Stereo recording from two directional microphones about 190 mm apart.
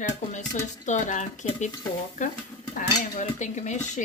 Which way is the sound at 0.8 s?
40° left (ahead or behind).